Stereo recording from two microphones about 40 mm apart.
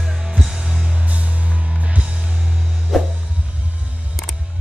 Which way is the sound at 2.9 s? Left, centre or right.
Centre.